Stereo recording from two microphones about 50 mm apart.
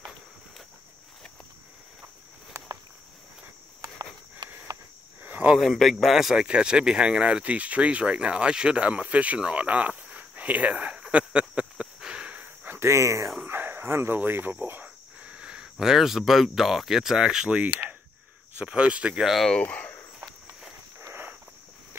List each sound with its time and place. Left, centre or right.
5.2 s a sound: right
5.6 s speech: centre
6.4 s speech: centre
12.0 s a sound: centre
12.8 s speech: right
13.5 s a sound: right
14.1 s speech: right
15.1 s speech: right
17.2 s speech: centre
18.6 s speech: right
19.6 s a sound: left
21.1 s walk: right